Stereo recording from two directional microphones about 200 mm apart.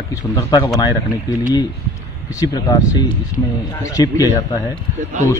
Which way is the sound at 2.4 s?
15° left (ahead or behind).